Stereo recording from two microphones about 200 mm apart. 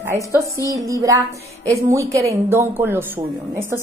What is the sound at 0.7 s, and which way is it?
A woman's voice, 15° right (ahead or behind).